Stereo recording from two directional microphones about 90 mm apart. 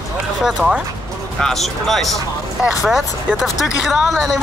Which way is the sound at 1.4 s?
5° left (ahead or behind).